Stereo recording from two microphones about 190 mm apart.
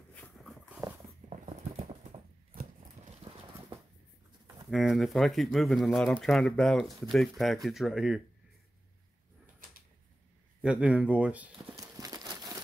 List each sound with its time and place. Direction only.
0.1 s dog: 5° left (ahead or behind)
1.3 s patter: 35° right (ahead or behind)
4.6 s speech: centre (ahead or behind)
10.6 s speech: 5° right (ahead or behind)
11.5 s horse: 20° right (ahead or behind)